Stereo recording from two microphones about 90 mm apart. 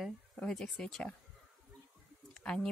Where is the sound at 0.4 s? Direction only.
10° left (ahead or behind).